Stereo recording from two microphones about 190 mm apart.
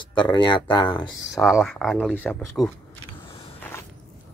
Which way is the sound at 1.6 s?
Centre (ahead or behind).